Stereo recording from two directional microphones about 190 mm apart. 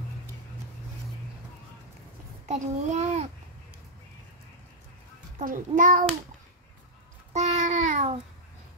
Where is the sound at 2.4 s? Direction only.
35° right (ahead or behind).